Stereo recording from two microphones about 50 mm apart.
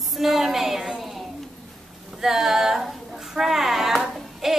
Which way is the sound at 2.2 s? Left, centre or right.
Centre.